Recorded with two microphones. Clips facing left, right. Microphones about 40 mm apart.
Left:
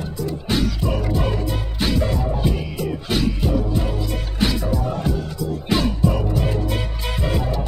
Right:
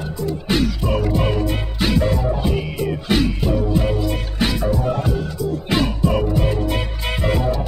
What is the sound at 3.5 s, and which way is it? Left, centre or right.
Music, centre.